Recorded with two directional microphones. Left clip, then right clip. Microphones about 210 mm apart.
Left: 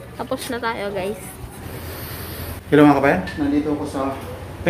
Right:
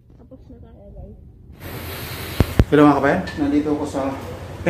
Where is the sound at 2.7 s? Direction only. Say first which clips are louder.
Left 1 dB; 5° left (ahead or behind).